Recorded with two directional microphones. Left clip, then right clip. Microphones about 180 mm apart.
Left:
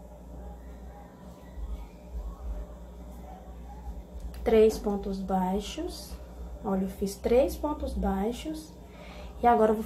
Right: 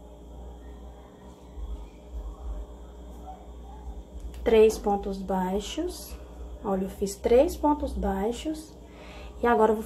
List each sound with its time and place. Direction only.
4.4 s a woman's voice: 10° right (ahead or behind)
9.4 s a woman's voice: 10° right (ahead or behind)